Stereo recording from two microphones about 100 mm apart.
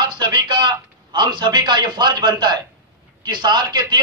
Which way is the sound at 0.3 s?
50° right (ahead or behind).